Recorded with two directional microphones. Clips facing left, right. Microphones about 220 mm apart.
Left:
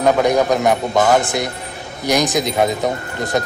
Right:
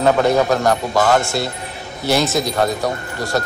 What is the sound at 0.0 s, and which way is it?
A man's voice, 15° left (ahead or behind).